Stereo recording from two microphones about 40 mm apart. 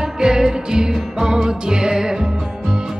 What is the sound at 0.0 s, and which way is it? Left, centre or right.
Music, centre.